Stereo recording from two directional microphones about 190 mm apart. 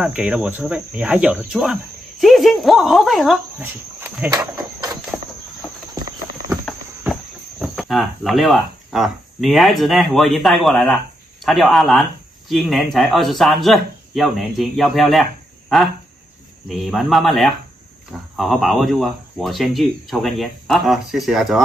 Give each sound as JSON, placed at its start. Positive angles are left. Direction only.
{"t": 0.0, "sound": "speech", "side_deg": -5}
{"t": 4.3, "sound": "a sound", "side_deg": -20}
{"t": 7.1, "sound": "speech", "side_deg": 0}
{"t": 16.6, "sound": "speech", "side_deg": 0}